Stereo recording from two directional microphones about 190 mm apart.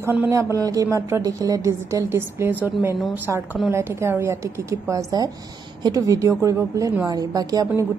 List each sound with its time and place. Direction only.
0.0 s a woman's voice: 10° right (ahead or behind)